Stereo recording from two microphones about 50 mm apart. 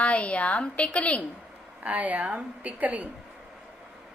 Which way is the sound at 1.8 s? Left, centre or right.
Right.